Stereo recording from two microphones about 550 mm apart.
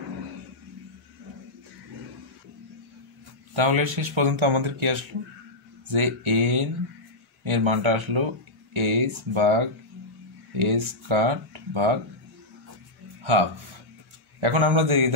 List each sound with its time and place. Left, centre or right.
3.5 s speech: right
13.2 s speech: right